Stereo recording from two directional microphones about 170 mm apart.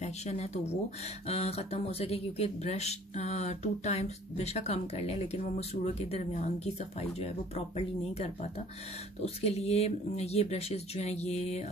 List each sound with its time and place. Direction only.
0.0 s speech: 40° left (ahead or behind)